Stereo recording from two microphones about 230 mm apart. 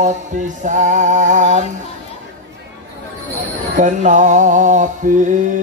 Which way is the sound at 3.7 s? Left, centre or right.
Right.